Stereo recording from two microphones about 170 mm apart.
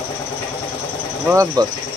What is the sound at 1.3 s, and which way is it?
Speech, 15° right (ahead or behind).